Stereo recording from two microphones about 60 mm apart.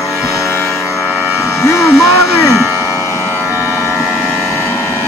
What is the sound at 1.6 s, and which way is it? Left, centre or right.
Speech, left.